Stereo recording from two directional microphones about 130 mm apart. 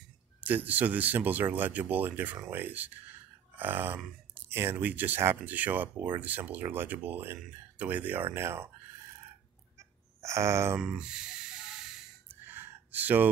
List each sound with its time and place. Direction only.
0.4 s speech: 15° right (ahead or behind)
3.5 s grunt: 15° right (ahead or behind)
4.4 s speech: 15° right (ahead or behind)
10.2 s speech: 20° right (ahead or behind)
10.8 s a sound: 5° right (ahead or behind)
12.3 s gasp: 15° right (ahead or behind)